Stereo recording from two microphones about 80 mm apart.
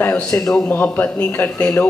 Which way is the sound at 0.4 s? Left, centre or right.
Centre.